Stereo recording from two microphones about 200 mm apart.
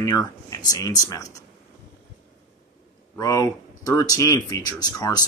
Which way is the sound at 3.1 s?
15° left (ahead or behind).